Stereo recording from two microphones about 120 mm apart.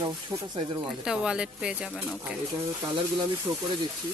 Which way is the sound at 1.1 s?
10° right (ahead or behind).